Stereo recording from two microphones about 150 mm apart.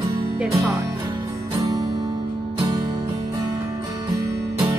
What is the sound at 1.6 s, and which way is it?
Music, 25° right (ahead or behind).